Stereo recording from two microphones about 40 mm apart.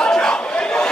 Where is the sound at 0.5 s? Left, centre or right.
Left.